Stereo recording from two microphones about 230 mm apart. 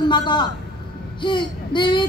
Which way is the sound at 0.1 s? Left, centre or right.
Centre.